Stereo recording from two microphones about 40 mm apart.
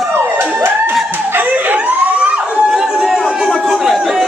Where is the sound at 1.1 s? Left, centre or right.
Right.